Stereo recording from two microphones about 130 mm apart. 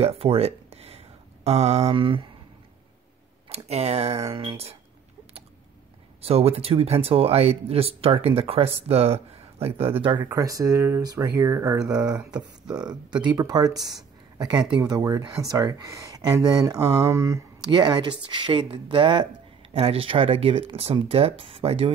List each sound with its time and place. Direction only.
0.0 s speech: 50° right (ahead or behind)
3.4 s speech: 55° right (ahead or behind)
4.3 s speech: 45° right (ahead or behind)
6.2 s speech: 50° right (ahead or behind)
10.3 s speech: 25° right (ahead or behind)
12.4 s speech: 5° right (ahead or behind)
13.2 s speech: 30° right (ahead or behind)
17.6 s speech: 35° right (ahead or behind)
19.7 s speech: 50° right (ahead or behind)